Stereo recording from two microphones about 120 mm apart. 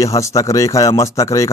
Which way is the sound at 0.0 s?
25° left (ahead or behind).